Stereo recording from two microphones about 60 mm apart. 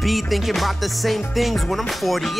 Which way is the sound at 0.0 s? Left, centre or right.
Centre.